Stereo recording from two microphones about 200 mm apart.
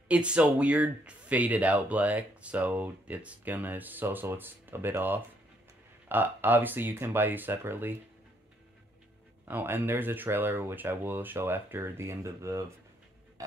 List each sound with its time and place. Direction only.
0.1 s speech: 5° right (ahead or behind)
9.5 s speech: 10° right (ahead or behind)